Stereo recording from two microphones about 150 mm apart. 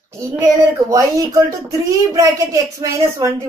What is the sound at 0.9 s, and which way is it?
A woman's voice, 20° right (ahead or behind).